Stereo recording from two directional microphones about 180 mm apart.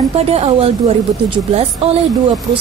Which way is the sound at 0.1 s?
35° right (ahead or behind).